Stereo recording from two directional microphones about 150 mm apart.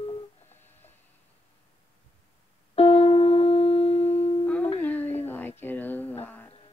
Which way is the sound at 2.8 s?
40° left (ahead or behind).